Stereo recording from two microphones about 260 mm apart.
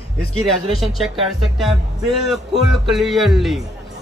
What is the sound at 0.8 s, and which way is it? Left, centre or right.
A man's voice, centre.